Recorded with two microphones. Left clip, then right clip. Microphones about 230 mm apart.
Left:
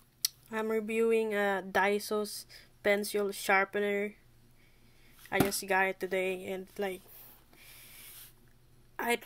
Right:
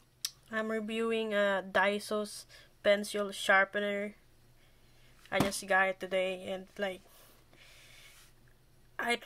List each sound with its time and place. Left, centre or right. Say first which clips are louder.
0.2 s speech: left 2 dB; centre
5.3 s speech: even; centre
8.9 s a sound: left 1 dB; centre